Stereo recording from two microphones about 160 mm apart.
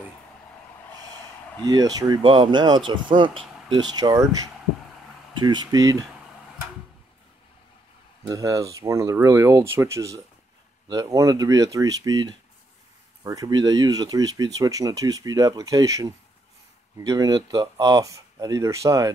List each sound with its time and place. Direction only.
1.6 s speech: 25° right (ahead or behind)
5.3 s speech: 30° right (ahead or behind)
8.3 s speech: 20° right (ahead or behind)